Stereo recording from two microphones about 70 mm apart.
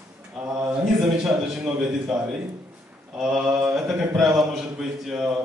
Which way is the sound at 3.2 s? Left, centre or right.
Centre.